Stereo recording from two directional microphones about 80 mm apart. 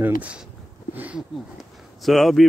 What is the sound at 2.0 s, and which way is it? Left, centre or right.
Speech, centre.